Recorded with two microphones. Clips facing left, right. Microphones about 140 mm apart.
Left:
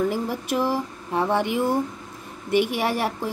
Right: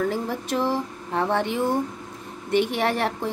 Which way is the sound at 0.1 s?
10° left (ahead or behind).